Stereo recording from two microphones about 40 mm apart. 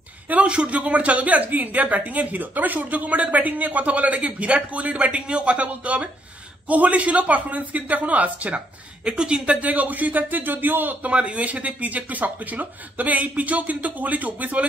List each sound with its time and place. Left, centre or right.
0.3 s a woman's voice: right
9.0 s speech: right
11.1 s a woman's voice: right